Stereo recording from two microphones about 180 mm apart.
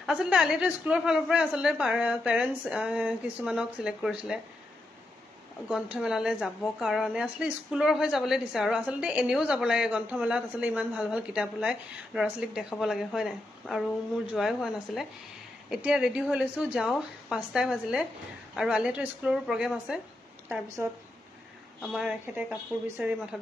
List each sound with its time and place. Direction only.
0.0 s a woman's voice: 5° right (ahead or behind)
5.7 s a woman's voice: 5° right (ahead or behind)
21.8 s a woman's voice: centre (ahead or behind)